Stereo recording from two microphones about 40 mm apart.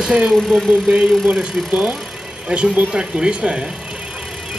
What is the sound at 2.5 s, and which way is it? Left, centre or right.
Speech, right.